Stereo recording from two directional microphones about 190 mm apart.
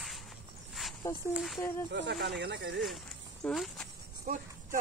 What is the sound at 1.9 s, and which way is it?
Speech, 65° right (ahead or behind).